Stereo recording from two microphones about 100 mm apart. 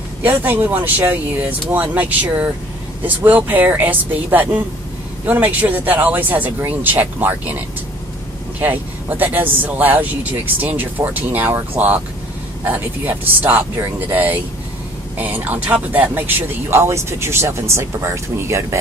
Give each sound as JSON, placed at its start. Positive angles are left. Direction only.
{"t": 0.4, "sound": "speech", "side_deg": -20}